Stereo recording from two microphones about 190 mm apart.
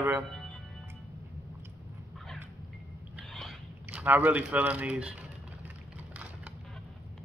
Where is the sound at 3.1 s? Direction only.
Centre (ahead or behind).